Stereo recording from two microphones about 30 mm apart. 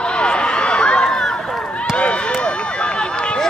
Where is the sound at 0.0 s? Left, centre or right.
Left.